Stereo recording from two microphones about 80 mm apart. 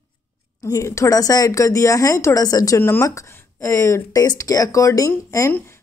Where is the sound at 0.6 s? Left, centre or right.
Left.